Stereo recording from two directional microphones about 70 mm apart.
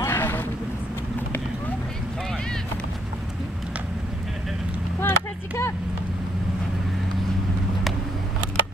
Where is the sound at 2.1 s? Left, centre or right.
Centre.